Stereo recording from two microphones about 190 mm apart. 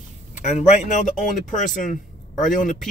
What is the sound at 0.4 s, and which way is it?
Speech, 40° left (ahead or behind).